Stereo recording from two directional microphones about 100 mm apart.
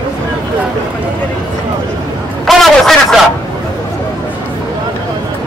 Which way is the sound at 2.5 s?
Centre (ahead or behind).